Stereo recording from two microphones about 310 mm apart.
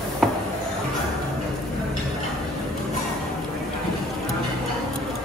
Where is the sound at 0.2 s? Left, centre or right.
Centre.